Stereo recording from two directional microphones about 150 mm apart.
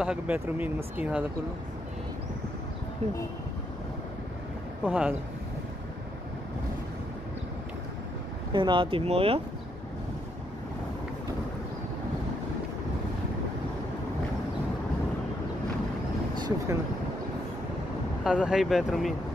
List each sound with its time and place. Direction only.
0.0 s speech: 5° right (ahead or behind)
4.8 s speech: 10° right (ahead or behind)
8.5 s speech: 30° right (ahead or behind)
16.3 s a sound: 30° right (ahead or behind)
18.2 s speech: 5° right (ahead or behind)